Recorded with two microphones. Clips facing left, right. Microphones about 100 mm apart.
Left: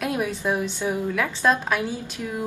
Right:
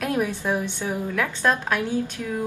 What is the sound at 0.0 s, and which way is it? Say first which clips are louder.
A woman's voice: right 1 dB; 10° left (ahead or behind).